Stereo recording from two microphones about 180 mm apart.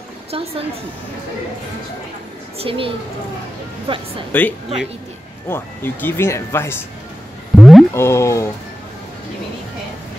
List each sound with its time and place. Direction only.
0.3 s a woman's voice: 35° right (ahead or behind)
2.6 s a woman's voice: 30° right (ahead or behind)
4.3 s speech: 10° left (ahead or behind)
7.5 s a sound: centre (ahead or behind)
7.9 s speech: 15° left (ahead or behind)